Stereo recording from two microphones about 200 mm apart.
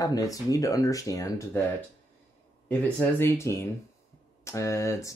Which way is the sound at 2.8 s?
10° left (ahead or behind).